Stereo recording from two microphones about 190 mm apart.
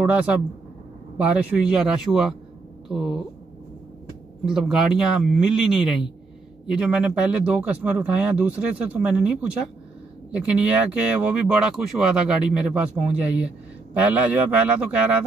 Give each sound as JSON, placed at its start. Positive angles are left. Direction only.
{"t": 0.0, "sound": "speech", "side_deg": -5}
{"t": 4.5, "sound": "speech", "side_deg": 0}